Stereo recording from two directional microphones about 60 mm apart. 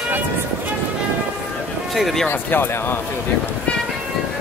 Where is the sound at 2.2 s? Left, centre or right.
Left.